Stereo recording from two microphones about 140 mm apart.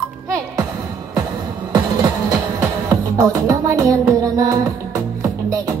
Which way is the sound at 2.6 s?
25° right (ahead or behind).